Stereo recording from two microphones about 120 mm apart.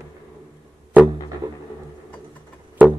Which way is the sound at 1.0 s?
15° right (ahead or behind).